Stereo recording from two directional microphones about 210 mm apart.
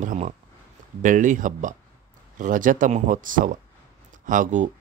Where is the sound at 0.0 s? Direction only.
40° right (ahead or behind).